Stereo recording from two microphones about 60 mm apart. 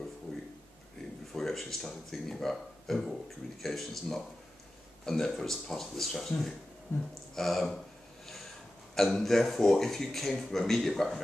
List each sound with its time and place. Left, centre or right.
1.3 s a man's voice: centre
6.9 s a sound: left
7.3 s speech: centre
8.9 s speech: centre